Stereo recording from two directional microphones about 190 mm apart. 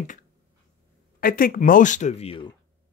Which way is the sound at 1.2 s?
50° left (ahead or behind).